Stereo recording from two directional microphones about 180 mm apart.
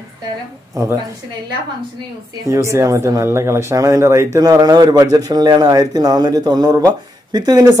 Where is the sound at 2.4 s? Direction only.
15° right (ahead or behind).